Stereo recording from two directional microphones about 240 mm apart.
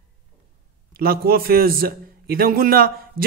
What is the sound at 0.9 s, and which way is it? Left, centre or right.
A man's voice, right.